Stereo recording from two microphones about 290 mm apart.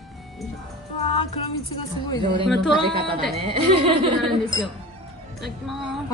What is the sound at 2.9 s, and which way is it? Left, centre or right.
A woman's voice, centre.